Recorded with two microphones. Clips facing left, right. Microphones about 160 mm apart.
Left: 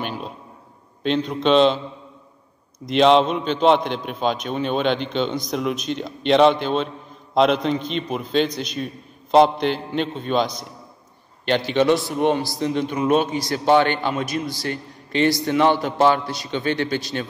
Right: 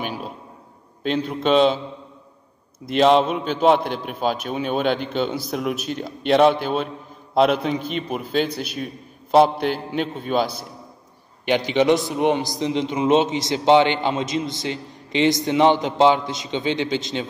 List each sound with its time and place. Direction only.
0.0 s a sound: 10° right (ahead or behind)
1.0 s a man's voice: 5° right (ahead or behind)
2.8 s a man's voice: 5° right (ahead or behind)